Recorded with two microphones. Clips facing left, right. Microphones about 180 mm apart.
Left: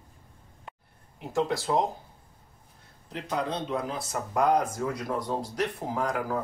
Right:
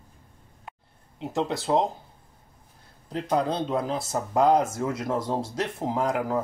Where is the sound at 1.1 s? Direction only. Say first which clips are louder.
Even; 20° right (ahead or behind).